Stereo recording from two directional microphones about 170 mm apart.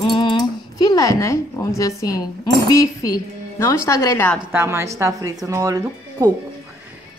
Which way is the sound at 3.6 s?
20° left (ahead or behind).